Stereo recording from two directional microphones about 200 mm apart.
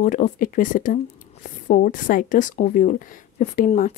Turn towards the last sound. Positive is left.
turn(degrees=40)  # may be behind; listen again after turning